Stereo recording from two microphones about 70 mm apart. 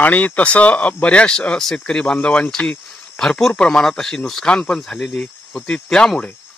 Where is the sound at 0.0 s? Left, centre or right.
Left.